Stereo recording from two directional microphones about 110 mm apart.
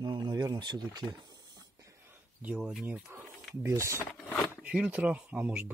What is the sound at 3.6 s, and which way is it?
Speech, 25° right (ahead or behind).